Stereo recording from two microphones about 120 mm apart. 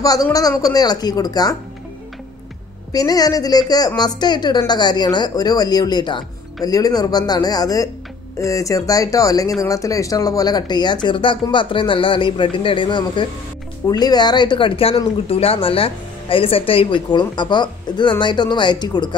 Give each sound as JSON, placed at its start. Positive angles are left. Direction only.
{"t": 0.0, "sound": "speech", "side_deg": 30}
{"t": 2.9, "sound": "speech", "side_deg": 30}